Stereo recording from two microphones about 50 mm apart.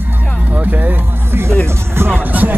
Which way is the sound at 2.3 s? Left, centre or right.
Right.